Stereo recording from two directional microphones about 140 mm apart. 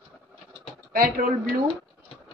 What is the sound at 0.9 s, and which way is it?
Speech, 90° right.